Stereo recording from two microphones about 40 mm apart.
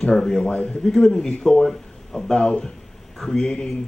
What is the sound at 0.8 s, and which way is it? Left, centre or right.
A man's voice, centre.